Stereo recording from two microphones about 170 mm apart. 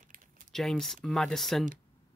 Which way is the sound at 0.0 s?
55° right (ahead or behind).